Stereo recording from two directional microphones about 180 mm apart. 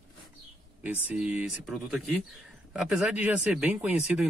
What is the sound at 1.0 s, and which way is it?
Speech, 10° right (ahead or behind).